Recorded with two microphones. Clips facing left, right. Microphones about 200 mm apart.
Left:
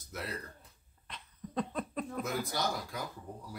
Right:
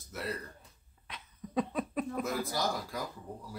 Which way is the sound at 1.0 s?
5° right (ahead or behind).